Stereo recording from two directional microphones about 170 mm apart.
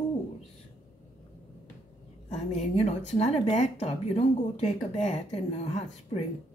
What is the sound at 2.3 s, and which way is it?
Speech, 40° left (ahead or behind).